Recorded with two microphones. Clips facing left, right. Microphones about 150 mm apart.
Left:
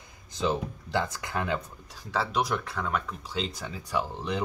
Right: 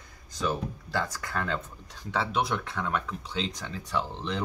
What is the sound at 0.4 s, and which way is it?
Speech, 20° left (ahead or behind).